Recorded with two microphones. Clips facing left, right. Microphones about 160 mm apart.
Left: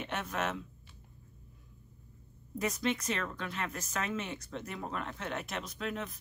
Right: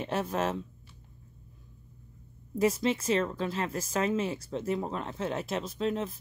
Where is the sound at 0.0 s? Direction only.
30° right (ahead or behind).